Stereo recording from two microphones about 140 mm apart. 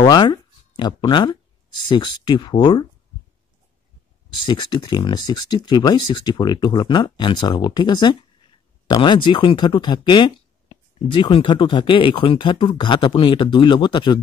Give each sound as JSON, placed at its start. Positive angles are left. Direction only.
{"t": 0.0, "sound": "speech", "side_deg": 30}
{"t": 4.5, "sound": "speech", "side_deg": 35}